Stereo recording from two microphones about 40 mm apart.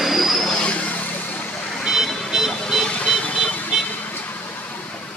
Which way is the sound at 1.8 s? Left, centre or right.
Centre.